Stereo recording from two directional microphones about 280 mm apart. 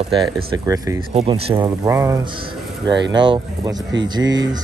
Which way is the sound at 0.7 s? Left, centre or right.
Centre.